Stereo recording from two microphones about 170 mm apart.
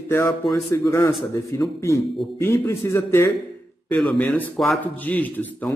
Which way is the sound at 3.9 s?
5° left (ahead or behind).